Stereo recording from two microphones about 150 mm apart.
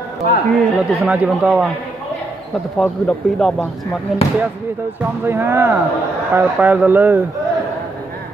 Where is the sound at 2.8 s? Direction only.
10° left (ahead or behind).